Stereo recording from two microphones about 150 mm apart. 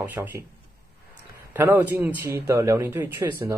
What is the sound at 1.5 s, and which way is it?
A man's voice, 15° right (ahead or behind).